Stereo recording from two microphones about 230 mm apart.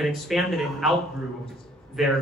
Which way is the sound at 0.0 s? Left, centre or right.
Centre.